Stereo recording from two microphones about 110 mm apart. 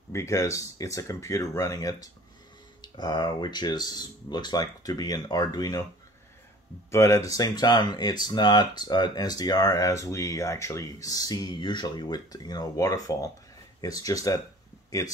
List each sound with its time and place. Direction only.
0.1 s speech: 25° left (ahead or behind)
2.8 s speech: 40° left (ahead or behind)
6.9 s speech: 30° left (ahead or behind)